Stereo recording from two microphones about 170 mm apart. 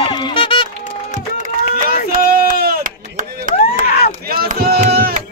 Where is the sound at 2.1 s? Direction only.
60° right (ahead or behind).